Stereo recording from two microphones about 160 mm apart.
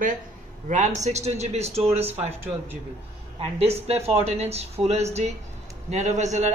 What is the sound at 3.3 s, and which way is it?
A man's voice, 40° right (ahead or behind).